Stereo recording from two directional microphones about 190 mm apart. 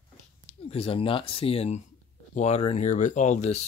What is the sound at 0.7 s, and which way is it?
Speech, 30° left (ahead or behind).